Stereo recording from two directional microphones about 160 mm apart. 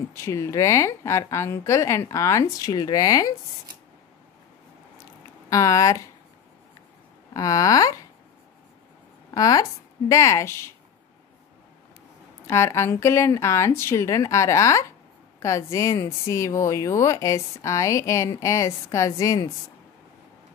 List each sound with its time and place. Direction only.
0.1 s speech: 15° left (ahead or behind)
5.5 s speech: 20° left (ahead or behind)
7.3 s speech: 20° left (ahead or behind)
9.3 s speech: 25° left (ahead or behind)
12.4 s speech: 15° left (ahead or behind)